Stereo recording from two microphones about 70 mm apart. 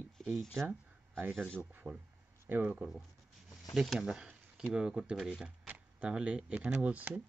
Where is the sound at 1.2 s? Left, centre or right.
Right.